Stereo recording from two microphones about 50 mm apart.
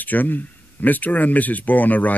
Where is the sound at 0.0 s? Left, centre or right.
Left.